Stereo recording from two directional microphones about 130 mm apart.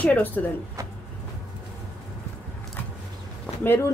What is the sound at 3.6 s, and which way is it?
Speech, 15° left (ahead or behind).